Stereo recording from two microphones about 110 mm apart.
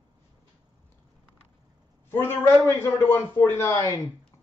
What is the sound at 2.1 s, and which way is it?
Speech, 20° left (ahead or behind).